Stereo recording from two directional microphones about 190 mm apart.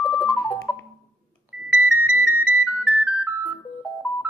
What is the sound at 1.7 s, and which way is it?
Music, 10° right (ahead or behind).